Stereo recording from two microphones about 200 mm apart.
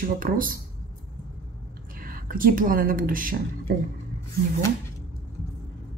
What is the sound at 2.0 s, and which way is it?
Speech, 45° right (ahead or behind).